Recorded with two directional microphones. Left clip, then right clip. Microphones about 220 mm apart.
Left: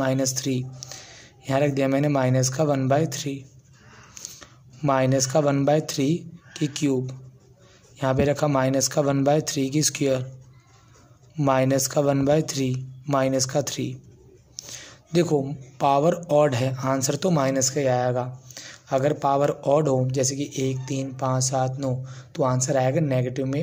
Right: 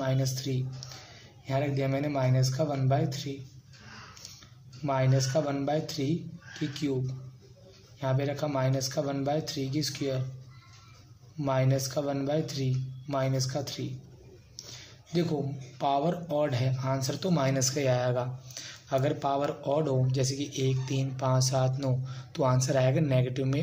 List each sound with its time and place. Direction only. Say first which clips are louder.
0.0 s speech: left 8 dB; 45° left (ahead or behind)
8.0 s speech: left 9 dB; 45° left (ahead or behind)
11.3 s speech: left 8 dB; 45° left (ahead or behind)
14.7 s a sound: left 8 dB; 45° left (ahead or behind)
15.8 s speech: left 8 dB; 45° left (ahead or behind); by 23.6 s 30° left (ahead or behind)